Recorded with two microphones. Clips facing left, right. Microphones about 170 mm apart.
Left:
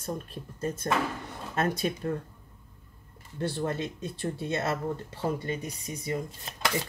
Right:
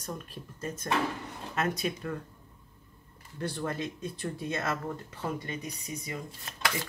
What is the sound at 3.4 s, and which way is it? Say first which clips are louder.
Speech: left 3 dB; 25° left (ahead or behind).